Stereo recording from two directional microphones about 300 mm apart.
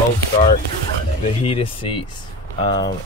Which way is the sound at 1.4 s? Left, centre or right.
Centre.